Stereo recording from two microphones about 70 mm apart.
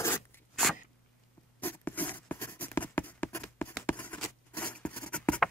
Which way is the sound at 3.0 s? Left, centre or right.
Left.